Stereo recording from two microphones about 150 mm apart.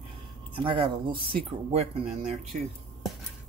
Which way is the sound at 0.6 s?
35° right (ahead or behind).